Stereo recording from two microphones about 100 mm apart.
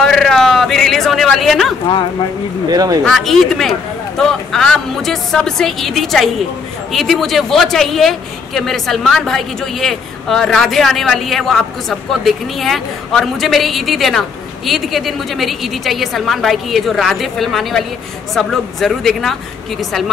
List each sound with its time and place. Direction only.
0.0 s a sound: 5° left (ahead or behind)
2.7 s speech: 40° right (ahead or behind)
3.1 s a woman's voice: 5° left (ahead or behind)